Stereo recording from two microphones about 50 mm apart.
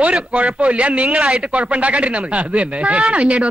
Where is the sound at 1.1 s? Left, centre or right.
Centre.